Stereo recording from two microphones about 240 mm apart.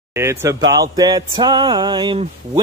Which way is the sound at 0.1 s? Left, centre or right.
Centre.